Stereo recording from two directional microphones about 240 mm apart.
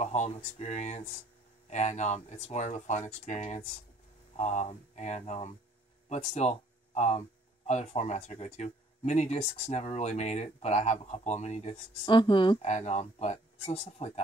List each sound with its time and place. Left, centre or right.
0.0 s speech: left